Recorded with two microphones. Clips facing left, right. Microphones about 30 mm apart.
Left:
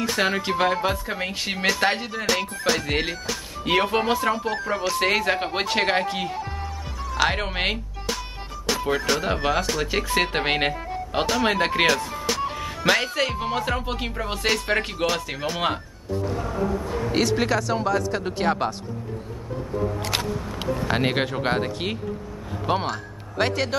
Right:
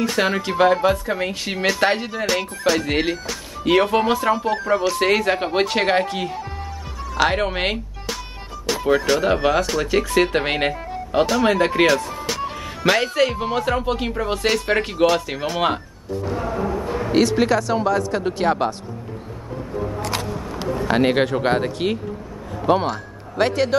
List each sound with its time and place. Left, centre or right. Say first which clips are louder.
0.1 s speech: right 2 dB; centre
8.8 s speech: right 7 dB; centre
9.6 s speech: right 4 dB; centre
12.4 s speech: right 3 dB; centre
16.3 s music: right 2 dB; right
17.1 s speech: right 5 dB; centre
20.8 s a man's voice: right 7 dB; centre